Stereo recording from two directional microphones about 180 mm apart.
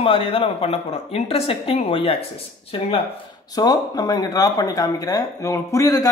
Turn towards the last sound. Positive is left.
turn(degrees=20)  # may be behind; listen again after turning